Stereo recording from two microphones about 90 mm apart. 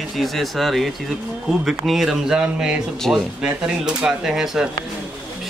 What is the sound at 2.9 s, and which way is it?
Speech, 5° left (ahead or behind).